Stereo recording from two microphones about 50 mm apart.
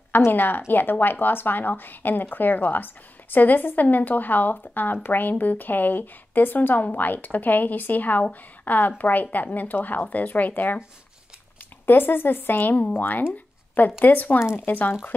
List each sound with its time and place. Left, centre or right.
0.3 s speech: left
11.8 s speech: left